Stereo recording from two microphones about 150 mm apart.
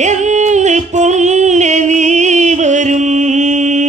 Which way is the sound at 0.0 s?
50° right (ahead or behind).